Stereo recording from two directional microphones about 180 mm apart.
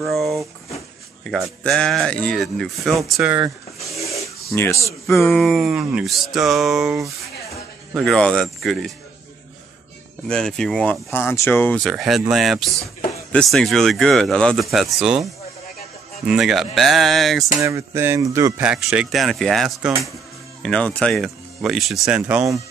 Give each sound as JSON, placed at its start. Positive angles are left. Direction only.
{"t": 0.0, "sound": "speech", "side_deg": 0}
{"t": 1.6, "sound": "speech", "side_deg": 5}
{"t": 3.9, "sound": "a sound", "side_deg": 15}
{"t": 5.3, "sound": "speech", "side_deg": 0}
{"t": 10.2, "sound": "speech", "side_deg": 5}
{"t": 11.8, "sound": "speech", "side_deg": 0}
{"t": 16.3, "sound": "speech", "side_deg": 0}
{"t": 17.6, "sound": "speech", "side_deg": -15}
{"t": 18.7, "sound": "speech", "side_deg": -5}